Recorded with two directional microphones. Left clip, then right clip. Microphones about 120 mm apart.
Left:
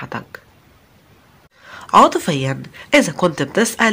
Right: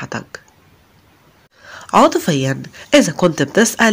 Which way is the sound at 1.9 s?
25° right (ahead or behind).